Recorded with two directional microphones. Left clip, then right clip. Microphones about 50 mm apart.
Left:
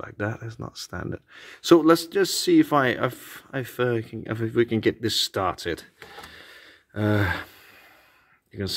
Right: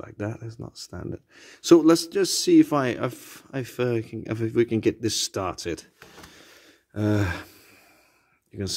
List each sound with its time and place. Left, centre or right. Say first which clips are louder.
0.0 s speech: left 3 dB; right
0.6 s speech: left 4 dB; centre
1.3 s a man's voice: right 1 dB; right
4.6 s speech: even; right
5.4 s speech: left 3 dB; right
6.9 s gasp: left 2 dB; right
8.5 s a man's voice: left 1 dB; right